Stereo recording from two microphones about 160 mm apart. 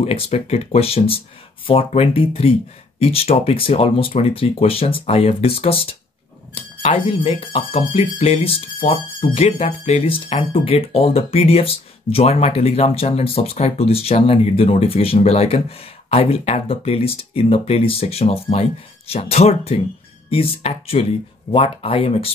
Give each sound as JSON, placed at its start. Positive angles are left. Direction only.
{"t": 0.0, "sound": "speech", "side_deg": 40}